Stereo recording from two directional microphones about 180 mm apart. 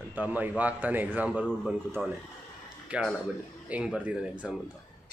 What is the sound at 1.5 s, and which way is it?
Speech, 5° left (ahead or behind).